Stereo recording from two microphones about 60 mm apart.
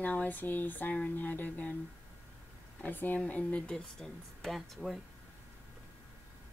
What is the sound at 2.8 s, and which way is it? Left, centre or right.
Speech, left.